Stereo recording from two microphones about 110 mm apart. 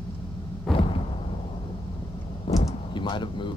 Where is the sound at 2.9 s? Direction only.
45° left (ahead or behind).